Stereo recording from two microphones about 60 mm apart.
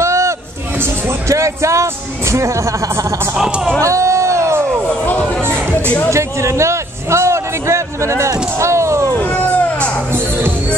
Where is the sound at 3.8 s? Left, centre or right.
Right.